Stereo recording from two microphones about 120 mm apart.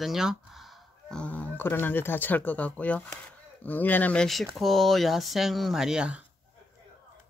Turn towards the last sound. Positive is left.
turn(degrees=-10)  # may be behind; listen again after turning